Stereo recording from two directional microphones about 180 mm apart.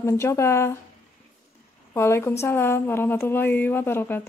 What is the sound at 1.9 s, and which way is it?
A woman's voice, 15° left (ahead or behind).